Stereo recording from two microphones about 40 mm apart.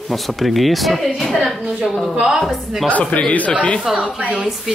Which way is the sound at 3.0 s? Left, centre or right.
Left.